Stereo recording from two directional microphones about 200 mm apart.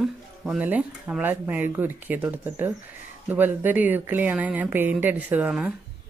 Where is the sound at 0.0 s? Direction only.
5° right (ahead or behind).